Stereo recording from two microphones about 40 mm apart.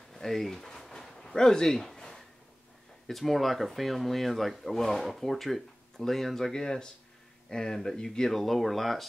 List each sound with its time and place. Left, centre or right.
0.1 s a sound: centre
3.1 s speech: centre
6.5 s speech: centre